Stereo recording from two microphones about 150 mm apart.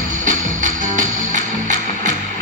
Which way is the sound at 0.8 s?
55° right (ahead or behind).